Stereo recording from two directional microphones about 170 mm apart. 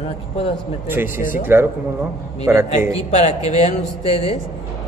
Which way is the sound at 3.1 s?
40° left (ahead or behind).